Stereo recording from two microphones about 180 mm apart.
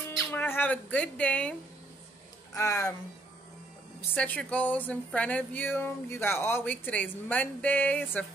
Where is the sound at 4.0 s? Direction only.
10° left (ahead or behind).